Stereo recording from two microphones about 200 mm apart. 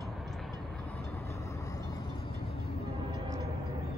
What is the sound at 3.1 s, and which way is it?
Train, 20° right (ahead or behind).